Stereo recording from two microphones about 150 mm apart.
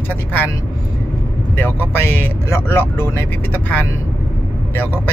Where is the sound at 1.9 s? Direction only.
15° left (ahead or behind).